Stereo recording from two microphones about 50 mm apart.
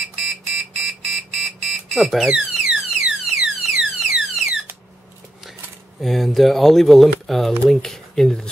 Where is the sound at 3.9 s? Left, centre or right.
Centre.